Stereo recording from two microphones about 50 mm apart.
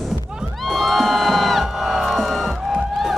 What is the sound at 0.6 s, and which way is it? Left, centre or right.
Music, centre.